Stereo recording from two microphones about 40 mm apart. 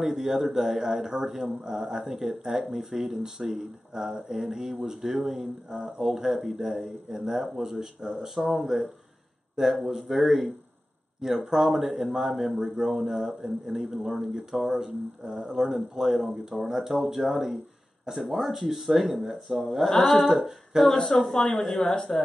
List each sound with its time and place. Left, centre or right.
0.0 s speech: centre
9.8 s speech: centre
21.7 s a woman's voice: centre